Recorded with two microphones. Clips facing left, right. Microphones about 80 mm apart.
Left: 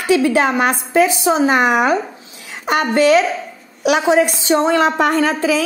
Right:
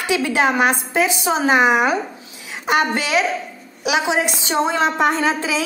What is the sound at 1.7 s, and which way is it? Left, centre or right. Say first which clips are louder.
Speech: left 2 dB; centre.